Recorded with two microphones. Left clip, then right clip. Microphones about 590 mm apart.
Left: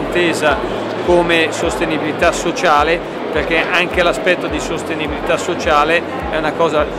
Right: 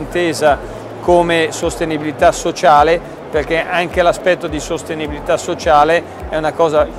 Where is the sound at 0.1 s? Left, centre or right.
Right.